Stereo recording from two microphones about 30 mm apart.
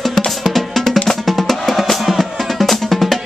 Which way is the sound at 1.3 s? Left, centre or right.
Centre.